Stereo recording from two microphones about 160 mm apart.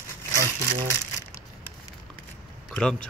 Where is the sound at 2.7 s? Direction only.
5° left (ahead or behind).